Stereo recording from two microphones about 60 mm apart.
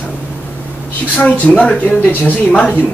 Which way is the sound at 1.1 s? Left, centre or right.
Left.